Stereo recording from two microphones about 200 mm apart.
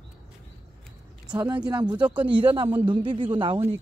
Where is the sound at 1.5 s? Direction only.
10° right (ahead or behind).